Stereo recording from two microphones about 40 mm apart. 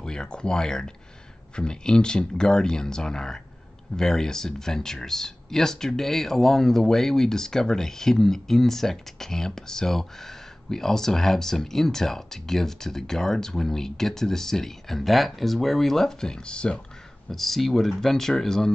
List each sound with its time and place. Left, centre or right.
0.0 s speech: centre
17.3 s speech: centre